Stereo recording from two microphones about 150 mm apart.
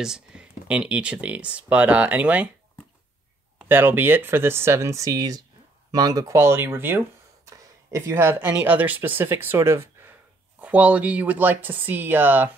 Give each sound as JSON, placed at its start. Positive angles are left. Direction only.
{"t": 0.0, "sound": "speech", "side_deg": -5}
{"t": 3.5, "sound": "speech", "side_deg": -15}